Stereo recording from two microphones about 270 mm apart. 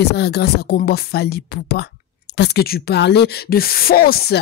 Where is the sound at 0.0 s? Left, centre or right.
Left.